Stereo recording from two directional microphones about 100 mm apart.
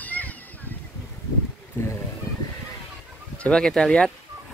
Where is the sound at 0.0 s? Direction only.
15° left (ahead or behind).